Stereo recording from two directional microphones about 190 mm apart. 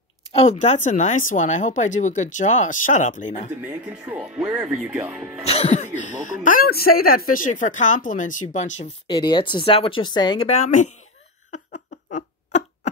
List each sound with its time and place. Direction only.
0.3 s speech: 35° left (ahead or behind)
3.6 s speech: 10° right (ahead or behind)
5.4 s speech: 35° left (ahead or behind)
9.0 s speech: 25° left (ahead or behind)